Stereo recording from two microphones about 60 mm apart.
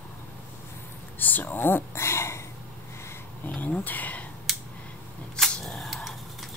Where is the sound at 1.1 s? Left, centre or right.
Left.